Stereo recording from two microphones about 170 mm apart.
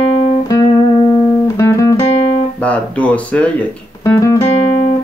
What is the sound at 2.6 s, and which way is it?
Speech, 10° left (ahead or behind).